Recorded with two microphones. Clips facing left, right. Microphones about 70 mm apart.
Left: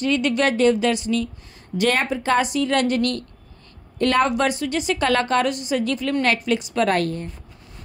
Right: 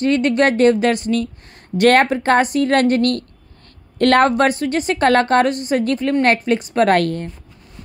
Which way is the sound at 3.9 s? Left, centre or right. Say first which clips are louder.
Right 6 dB; right.